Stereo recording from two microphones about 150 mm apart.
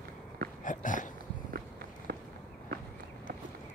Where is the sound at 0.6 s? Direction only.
60° left (ahead or behind).